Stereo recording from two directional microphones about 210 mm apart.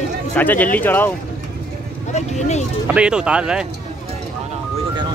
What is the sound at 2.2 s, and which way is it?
Speech, 30° left (ahead or behind).